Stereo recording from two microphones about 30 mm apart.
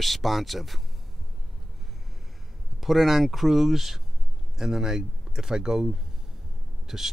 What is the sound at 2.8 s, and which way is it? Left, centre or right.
Speech, centre.